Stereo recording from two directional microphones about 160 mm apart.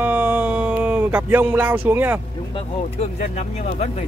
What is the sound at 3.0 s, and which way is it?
Speech, 45° left (ahead or behind).